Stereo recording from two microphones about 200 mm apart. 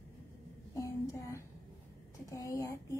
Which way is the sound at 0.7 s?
15° left (ahead or behind).